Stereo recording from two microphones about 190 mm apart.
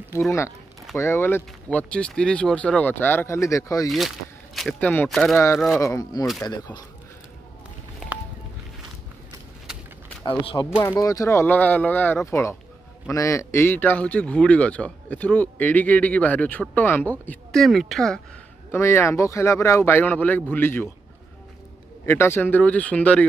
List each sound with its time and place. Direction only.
0.9 s a man's voice: 15° left (ahead or behind)
4.6 s speech: 5° left (ahead or behind)
5.8 s a man's voice: 15° left (ahead or behind)
9.7 s a sound: 5° right (ahead or behind)
10.2 s a man's voice: 25° left (ahead or behind); by 18.2 s centre (ahead or behind)
18.7 s a man's voice: 15° left (ahead or behind)
22.0 s a man's voice: 10° left (ahead or behind)